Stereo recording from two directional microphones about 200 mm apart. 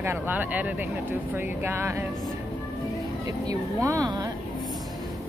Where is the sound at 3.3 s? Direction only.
15° right (ahead or behind).